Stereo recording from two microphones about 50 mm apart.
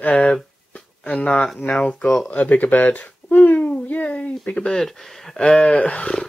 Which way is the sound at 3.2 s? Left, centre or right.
Left.